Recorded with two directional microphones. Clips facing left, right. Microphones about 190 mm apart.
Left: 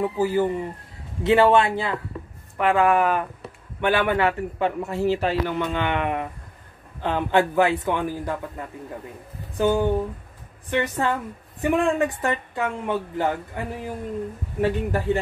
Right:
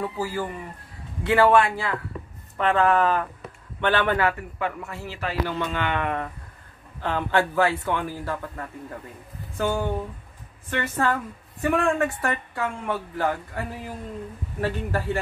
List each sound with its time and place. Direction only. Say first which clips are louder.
0.0 s speech: left 7 dB; 20° left (ahead or behind)
2.5 s a man's voice: left 2 dB; 10° left (ahead or behind); by 5.3 s 25° left (ahead or behind)
5.5 s a man's voice: left 2 dB; 15° left (ahead or behind)